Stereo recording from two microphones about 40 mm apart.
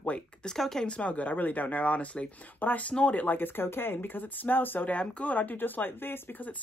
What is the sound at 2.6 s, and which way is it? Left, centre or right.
Speech, left.